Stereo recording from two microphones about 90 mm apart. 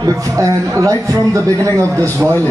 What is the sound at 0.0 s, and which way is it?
Speech, 40° right (ahead or behind).